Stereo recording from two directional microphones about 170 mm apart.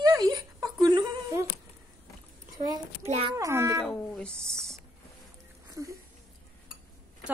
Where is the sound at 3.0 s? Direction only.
40° right (ahead or behind).